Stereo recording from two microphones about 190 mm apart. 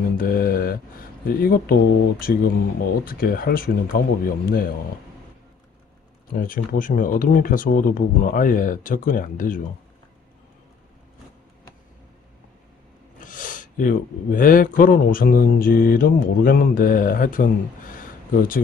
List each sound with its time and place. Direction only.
0.2 s a sound: 50° left (ahead or behind)
1.2 s speech: 50° left (ahead or behind)
6.3 s speech: 50° left (ahead or behind)
13.2 s speech: 45° left (ahead or behind)